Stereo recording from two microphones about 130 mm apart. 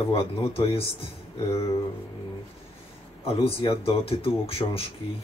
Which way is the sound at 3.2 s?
45° left (ahead or behind).